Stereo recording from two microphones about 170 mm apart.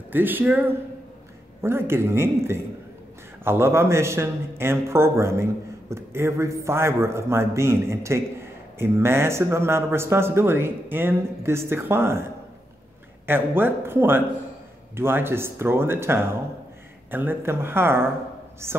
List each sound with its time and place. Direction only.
0.1 s a man's voice: 10° right (ahead or behind)
13.3 s a man's voice: 10° right (ahead or behind)